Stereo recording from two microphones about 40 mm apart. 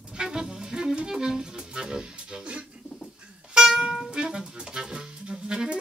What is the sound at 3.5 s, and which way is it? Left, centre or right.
Music, centre.